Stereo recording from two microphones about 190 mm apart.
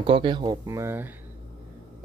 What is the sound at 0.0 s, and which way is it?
Speech, 25° right (ahead or behind).